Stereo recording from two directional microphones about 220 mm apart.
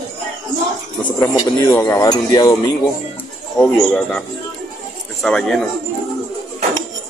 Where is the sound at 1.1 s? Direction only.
15° left (ahead or behind).